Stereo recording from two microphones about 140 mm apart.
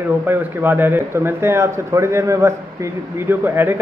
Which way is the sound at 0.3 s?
15° right (ahead or behind).